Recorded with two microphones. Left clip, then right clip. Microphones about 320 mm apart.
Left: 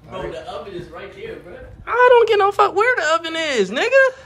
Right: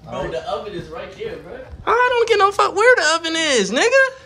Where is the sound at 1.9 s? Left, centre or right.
Centre.